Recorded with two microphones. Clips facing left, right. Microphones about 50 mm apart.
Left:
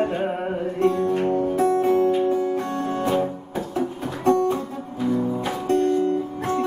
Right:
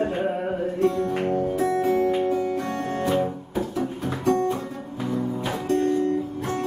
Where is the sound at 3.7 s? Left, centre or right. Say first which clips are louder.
Left 1 dB; left.